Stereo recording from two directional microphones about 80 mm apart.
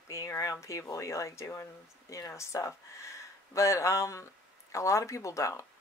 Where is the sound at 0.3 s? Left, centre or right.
Left.